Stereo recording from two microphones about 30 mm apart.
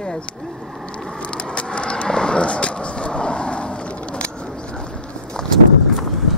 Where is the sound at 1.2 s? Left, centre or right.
Left.